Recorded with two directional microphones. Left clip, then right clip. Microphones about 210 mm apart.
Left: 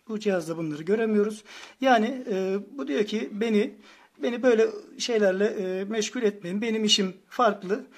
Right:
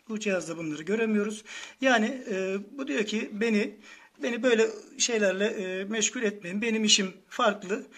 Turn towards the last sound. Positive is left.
turn(degrees=50)  # may be behind; listen again after turning